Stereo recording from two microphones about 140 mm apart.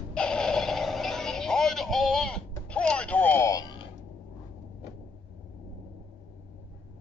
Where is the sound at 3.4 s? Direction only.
30° left (ahead or behind).